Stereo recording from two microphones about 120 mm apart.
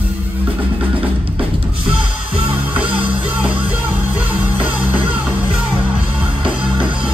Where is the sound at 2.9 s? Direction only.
45° right (ahead or behind).